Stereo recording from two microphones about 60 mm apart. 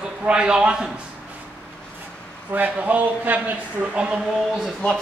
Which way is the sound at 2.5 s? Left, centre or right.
Right.